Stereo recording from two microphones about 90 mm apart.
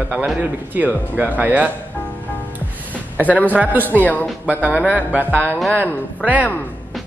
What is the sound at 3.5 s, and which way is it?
Music, 20° right (ahead or behind).